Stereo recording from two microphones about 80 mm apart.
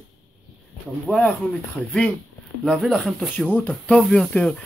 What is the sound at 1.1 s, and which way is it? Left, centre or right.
Speech, left.